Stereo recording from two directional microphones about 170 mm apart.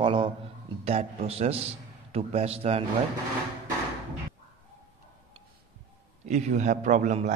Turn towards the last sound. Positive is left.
turn(degrees=-45)  # may be behind; listen again after turning